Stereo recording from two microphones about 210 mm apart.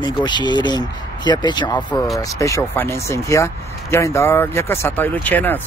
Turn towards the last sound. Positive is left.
turn(degrees=10)  # may be behind; listen again after turning